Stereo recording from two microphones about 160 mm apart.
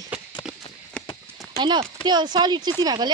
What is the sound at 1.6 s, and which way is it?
Speech, 30° right (ahead or behind).